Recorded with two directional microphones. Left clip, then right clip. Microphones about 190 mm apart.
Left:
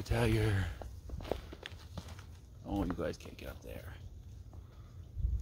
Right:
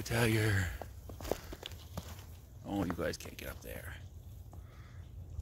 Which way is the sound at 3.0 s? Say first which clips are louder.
Right 1 dB; 5° left (ahead or behind).